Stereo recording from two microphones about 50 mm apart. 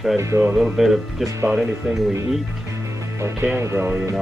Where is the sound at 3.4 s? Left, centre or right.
Right.